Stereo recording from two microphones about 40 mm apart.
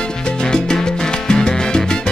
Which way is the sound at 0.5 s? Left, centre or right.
Centre.